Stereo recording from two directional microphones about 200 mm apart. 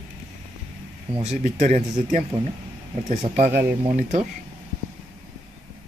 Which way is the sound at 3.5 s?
10° right (ahead or behind).